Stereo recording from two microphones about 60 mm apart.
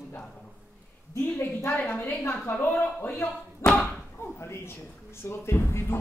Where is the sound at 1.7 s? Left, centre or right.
Left.